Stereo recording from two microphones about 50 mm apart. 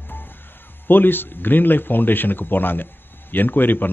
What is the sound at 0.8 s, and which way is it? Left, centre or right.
Speech, left.